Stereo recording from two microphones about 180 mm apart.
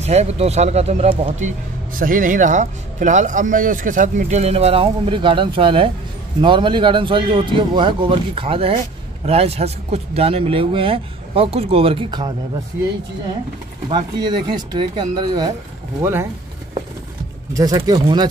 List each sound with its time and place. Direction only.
0.0 s a man's voice: 40° right (ahead or behind)
13.8 s a man's voice: 25° right (ahead or behind)
16.0 s speech: 15° right (ahead or behind)
17.6 s a man's voice: 20° right (ahead or behind)